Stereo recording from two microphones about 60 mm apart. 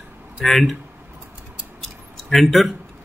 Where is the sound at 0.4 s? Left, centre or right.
Centre.